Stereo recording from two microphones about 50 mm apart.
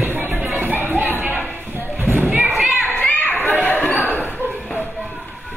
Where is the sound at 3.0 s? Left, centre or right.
Left.